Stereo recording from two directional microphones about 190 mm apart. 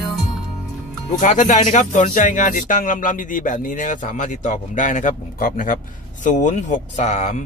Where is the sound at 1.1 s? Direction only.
40° left (ahead or behind).